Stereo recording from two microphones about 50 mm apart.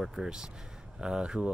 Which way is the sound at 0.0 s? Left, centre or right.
Centre.